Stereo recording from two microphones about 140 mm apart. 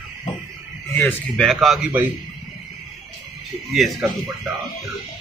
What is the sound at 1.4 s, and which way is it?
Speech, centre (ahead or behind).